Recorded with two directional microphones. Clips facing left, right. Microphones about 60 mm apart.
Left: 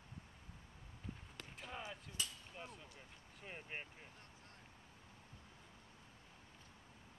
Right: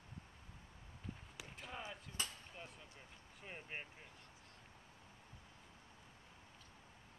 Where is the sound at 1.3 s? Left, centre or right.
Centre.